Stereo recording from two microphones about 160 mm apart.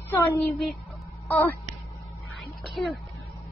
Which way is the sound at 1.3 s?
10° left (ahead or behind).